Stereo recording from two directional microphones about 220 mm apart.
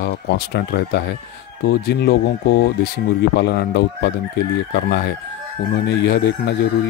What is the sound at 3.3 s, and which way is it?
Speech, 50° left (ahead or behind).